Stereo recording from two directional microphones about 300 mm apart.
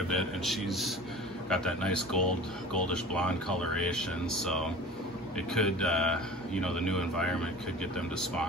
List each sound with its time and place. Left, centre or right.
0.1 s speech: centre
5.5 s speech: centre